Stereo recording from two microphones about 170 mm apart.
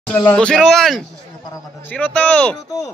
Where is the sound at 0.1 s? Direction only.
10° left (ahead or behind).